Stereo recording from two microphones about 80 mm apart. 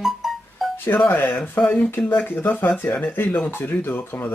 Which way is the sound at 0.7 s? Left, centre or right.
Left.